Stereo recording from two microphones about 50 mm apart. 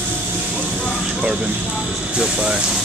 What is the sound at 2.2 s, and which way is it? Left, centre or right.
Speech, centre.